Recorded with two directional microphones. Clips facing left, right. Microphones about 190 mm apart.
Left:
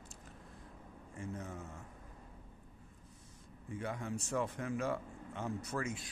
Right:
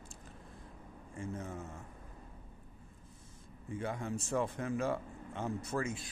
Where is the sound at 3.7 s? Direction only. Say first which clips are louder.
Right 2 dB; 25° right (ahead or behind).